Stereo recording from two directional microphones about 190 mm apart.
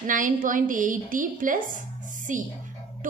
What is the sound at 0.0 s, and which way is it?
A woman's voice, 45° right (ahead or behind).